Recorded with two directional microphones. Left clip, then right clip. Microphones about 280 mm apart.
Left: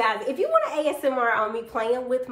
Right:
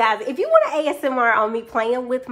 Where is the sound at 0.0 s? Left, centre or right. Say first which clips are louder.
Right 4 dB; right.